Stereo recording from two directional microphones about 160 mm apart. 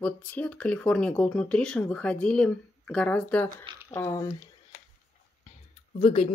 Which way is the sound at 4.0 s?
20° left (ahead or behind).